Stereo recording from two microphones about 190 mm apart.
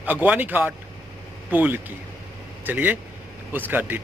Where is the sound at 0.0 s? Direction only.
10° right (ahead or behind).